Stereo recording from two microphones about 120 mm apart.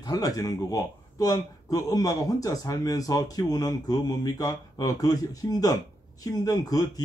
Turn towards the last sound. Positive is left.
turn(degrees=30)  # may be behind; listen again after turning